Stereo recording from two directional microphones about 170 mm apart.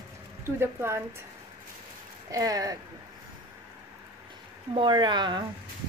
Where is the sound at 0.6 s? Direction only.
15° right (ahead or behind).